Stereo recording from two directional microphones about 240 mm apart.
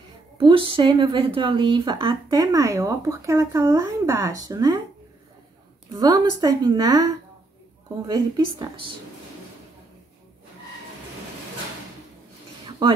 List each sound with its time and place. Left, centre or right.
0.4 s speech: right
5.9 s speech: centre
8.1 s a woman's voice: centre
12.6 s a sound: centre